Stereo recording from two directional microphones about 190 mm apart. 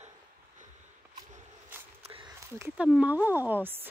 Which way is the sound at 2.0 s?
30° right (ahead or behind).